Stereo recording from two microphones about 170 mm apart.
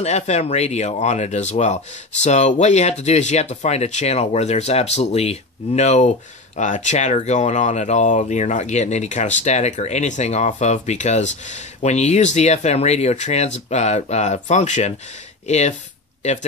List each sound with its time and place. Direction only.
0.0 s speech: 40° left (ahead or behind)